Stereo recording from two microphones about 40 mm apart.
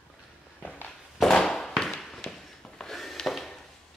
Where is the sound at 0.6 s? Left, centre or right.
Left.